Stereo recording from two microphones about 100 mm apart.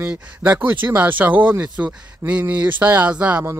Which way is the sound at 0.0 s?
15° right (ahead or behind).